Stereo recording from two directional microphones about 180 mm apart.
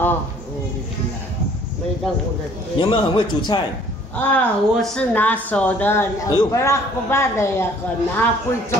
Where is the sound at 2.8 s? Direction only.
25° left (ahead or behind).